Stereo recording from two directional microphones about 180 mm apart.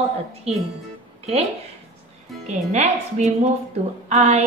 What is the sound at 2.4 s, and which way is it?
A woman's voice, 40° right (ahead or behind).